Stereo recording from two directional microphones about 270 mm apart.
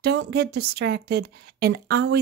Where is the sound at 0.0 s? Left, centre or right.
Right.